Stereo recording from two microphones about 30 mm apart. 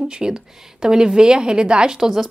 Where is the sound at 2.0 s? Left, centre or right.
Centre.